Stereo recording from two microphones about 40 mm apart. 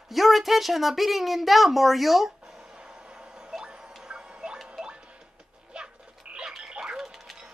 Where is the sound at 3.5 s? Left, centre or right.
Centre.